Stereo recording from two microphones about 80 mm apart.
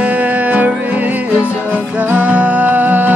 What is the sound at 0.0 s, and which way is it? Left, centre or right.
Music, centre.